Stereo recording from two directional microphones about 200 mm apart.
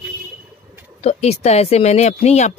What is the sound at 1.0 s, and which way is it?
Speech, 35° left (ahead or behind).